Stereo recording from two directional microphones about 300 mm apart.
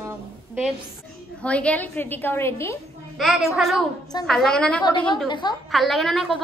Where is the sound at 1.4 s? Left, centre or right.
Centre.